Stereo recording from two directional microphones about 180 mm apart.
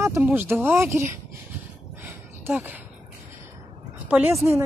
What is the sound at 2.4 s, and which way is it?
Speech, 10° right (ahead or behind).